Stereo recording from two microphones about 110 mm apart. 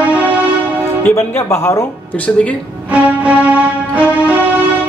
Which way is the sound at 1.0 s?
25° left (ahead or behind).